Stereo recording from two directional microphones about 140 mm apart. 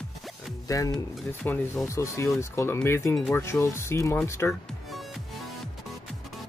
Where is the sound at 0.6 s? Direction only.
25° left (ahead or behind).